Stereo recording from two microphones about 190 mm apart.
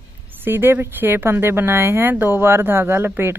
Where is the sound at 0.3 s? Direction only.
10° right (ahead or behind).